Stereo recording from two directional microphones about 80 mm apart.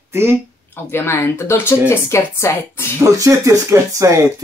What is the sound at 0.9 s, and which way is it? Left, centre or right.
Speech, left.